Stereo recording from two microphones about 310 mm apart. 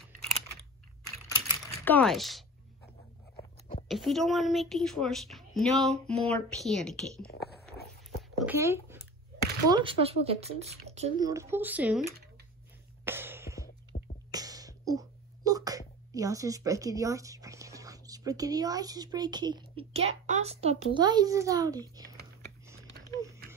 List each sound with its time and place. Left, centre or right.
1.9 s a woman's voice: centre
3.9 s a woman's voice: centre
8.2 s a sound: centre
9.7 s speech: centre
13.0 s a sound: centre
13.9 s music: left
14.3 s whispering: centre
16.1 s speech: centre
22.8 s a sound: centre